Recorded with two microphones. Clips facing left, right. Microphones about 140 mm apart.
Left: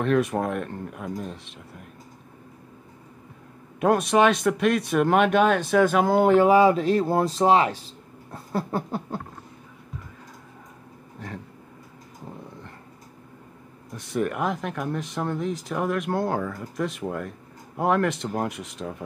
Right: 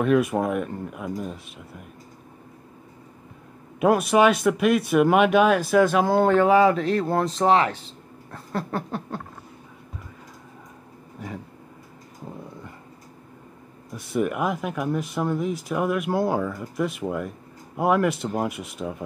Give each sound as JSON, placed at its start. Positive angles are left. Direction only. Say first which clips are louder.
{"t": 0.0, "sound": "speech", "louder": "right 2 dB", "side_deg": -5}
{"t": 3.8, "sound": "speech", "louder": "right 1 dB", "side_deg": -5}
{"t": 6.2, "sound": "speech", "louder": "left 1 dB", "side_deg": 15}
{"t": 11.1, "sound": "vehicle", "louder": "right 2 dB", "side_deg": -10}
{"t": 13.9, "sound": "speech", "louder": "right 2 dB", "side_deg": -5}